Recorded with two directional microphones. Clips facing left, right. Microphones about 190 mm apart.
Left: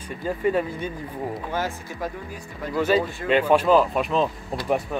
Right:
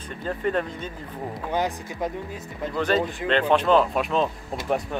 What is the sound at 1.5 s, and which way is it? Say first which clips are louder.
Speech: right 2 dB; 20° right (ahead or behind).